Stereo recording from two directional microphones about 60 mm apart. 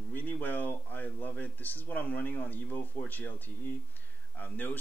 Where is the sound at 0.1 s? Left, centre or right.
Left.